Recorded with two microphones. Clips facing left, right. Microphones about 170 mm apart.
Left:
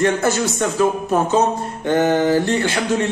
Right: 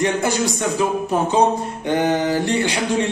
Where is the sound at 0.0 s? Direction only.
15° right (ahead or behind).